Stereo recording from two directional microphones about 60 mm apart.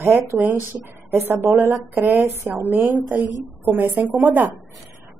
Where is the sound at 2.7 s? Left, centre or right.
Right.